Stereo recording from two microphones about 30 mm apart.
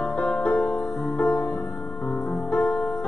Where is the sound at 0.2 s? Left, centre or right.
Left.